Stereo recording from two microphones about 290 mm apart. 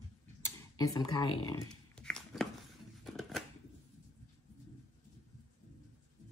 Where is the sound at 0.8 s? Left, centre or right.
Centre.